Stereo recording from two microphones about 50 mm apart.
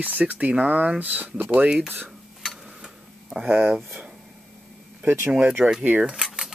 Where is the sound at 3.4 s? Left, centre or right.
Centre.